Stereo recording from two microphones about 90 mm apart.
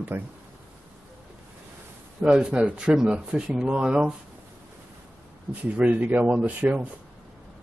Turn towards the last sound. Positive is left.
turn(degrees=-15)  # may be behind; listen again after turning